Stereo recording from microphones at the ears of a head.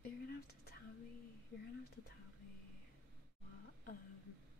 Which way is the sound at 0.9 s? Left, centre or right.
Left.